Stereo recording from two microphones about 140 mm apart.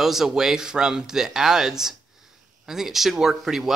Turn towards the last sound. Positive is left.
turn(degrees=0)  # may be behind; listen again after turning